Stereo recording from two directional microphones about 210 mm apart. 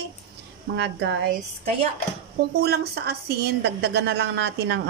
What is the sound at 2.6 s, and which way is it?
A woman's voice, 50° right (ahead or behind).